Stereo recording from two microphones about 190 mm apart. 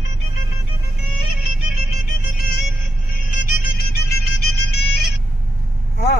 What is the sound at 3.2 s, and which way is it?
Music, 55° left (ahead or behind).